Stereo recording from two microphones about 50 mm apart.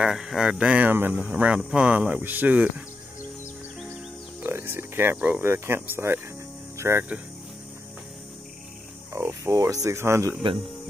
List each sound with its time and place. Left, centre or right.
0.1 s speech: centre
0.7 s speech: right
1.3 s speech: right
4.5 s speech: right
5.1 s speech: right
5.4 s speech: right
6.0 s speech: right
6.8 s speech: right
9.1 s speech: right